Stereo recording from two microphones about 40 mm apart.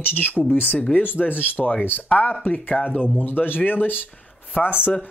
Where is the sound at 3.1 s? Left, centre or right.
Left.